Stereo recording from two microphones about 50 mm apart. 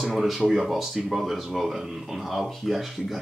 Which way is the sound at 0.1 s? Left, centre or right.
Centre.